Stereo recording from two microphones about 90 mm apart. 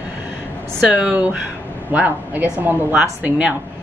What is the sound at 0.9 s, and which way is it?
A woman's voice, 15° right (ahead or behind).